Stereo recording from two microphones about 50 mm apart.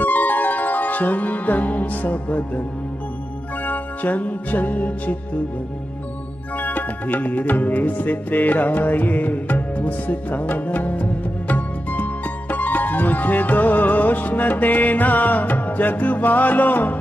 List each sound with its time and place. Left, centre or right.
0.0 s music: left
3.6 s music: left
6.6 s music: left